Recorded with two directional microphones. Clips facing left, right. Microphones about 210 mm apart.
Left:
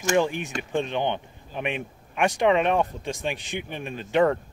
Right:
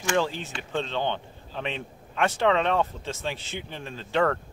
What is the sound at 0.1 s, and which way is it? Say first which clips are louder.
A man's voice: left 3 dB; 15° left (ahead or behind).